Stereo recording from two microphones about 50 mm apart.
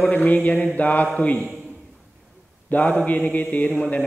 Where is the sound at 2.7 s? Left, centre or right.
Left.